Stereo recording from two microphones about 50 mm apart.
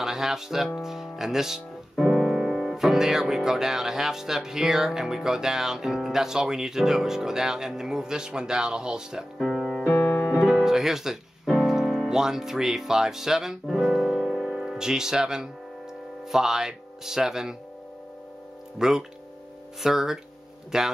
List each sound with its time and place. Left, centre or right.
0.0 s speech: centre
9.4 s music: centre
9.8 s piano: left
10.6 s piano: centre
12.1 s speech: centre
18.8 s speech: centre